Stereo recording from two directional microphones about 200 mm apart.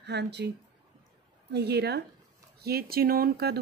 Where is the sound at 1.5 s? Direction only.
55° right (ahead or behind).